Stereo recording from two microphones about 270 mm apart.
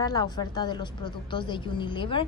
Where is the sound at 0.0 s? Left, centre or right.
Centre.